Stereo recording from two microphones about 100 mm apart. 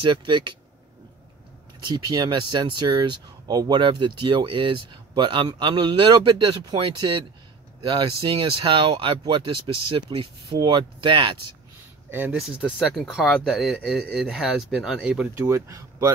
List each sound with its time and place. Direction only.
0.0 s speech: 55° right (ahead or behind)
1.9 s speech: 50° right (ahead or behind)
12.1 s speech: 20° right (ahead or behind)
12.9 s speech: centre (ahead or behind)
15.3 s speech: 25° right (ahead or behind)